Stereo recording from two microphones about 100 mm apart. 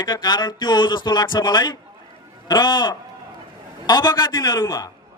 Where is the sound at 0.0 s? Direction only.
45° left (ahead or behind).